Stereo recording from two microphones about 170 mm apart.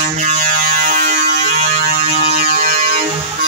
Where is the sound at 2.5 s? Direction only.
60° right (ahead or behind).